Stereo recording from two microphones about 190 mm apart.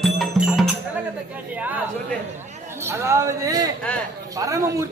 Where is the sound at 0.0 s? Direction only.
Centre (ahead or behind).